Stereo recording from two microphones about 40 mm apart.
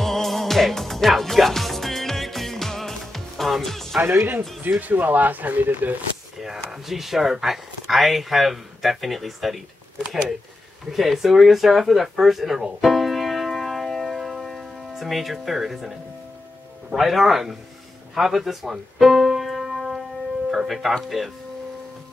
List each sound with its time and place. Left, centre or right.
0.0 s music: centre
4.6 s speech: right
6.4 s speech: centre
12.8 s music: centre
15.3 s speech: centre
18.1 s music: centre
20.5 s speech: centre